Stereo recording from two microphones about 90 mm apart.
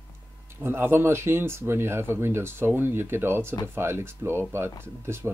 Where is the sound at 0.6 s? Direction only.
25° right (ahead or behind).